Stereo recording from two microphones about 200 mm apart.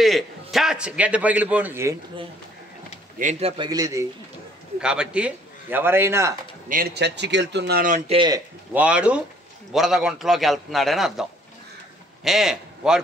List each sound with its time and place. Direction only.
0.0 s a man's voice: centre (ahead or behind)
3.2 s a man's voice: 35° right (ahead or behind); by 4.1 s 15° right (ahead or behind)
4.7 s a man's voice: 5° right (ahead or behind)
6.7 s speech: 50° right (ahead or behind)
8.1 s a man's voice: 25° right (ahead or behind)
8.7 s a man's voice: 5° right (ahead or behind)
12.3 s a man's voice: centre (ahead or behind)